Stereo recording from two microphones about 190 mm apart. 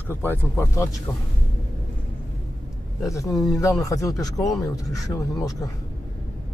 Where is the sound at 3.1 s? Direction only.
15° left (ahead or behind).